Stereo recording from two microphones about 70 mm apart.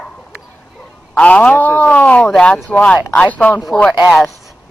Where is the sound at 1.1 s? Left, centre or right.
Centre.